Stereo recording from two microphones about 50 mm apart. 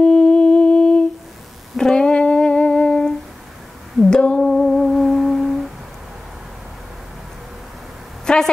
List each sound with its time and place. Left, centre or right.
0.0 s humming: centre
4.4 s humming: centre
8.3 s a sound: centre